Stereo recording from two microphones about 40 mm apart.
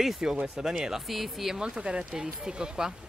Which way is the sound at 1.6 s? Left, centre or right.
Right.